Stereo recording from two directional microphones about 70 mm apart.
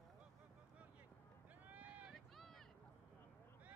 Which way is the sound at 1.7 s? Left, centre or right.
Right.